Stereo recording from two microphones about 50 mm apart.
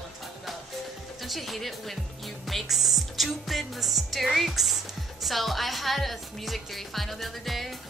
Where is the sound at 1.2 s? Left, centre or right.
Centre.